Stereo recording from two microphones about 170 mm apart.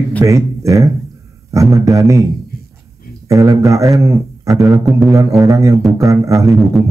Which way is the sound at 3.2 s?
20° right (ahead or behind).